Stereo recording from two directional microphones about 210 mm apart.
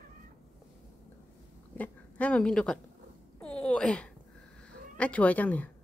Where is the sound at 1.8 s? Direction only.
5° left (ahead or behind).